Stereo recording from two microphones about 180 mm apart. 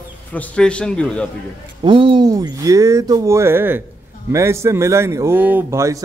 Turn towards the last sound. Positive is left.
turn(degrees=-15)  # may be behind; listen again after turning